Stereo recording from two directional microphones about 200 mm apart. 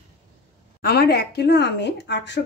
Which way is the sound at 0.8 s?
50° left (ahead or behind).